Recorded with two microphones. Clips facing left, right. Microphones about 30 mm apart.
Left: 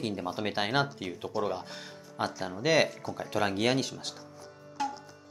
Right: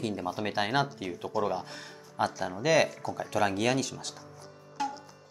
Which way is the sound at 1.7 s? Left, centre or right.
Left.